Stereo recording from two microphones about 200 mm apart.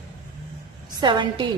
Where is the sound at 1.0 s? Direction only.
20° right (ahead or behind).